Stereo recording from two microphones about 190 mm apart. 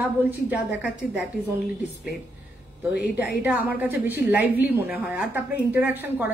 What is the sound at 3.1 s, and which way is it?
Speech, 60° left (ahead or behind).